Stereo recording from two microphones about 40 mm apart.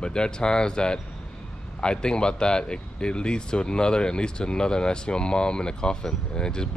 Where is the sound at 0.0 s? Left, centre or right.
Left.